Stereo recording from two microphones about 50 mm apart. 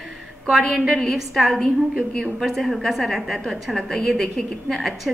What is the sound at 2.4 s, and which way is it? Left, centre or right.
A woman's voice, centre.